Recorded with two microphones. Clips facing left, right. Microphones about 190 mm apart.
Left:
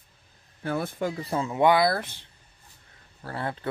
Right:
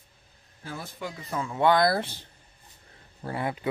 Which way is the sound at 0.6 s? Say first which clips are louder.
Left 9 dB; 60° left (ahead or behind).